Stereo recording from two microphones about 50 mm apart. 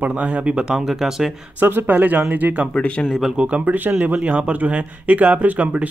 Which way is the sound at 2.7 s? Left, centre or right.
Left.